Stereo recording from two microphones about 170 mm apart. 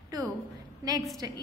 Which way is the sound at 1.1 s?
25° right (ahead or behind).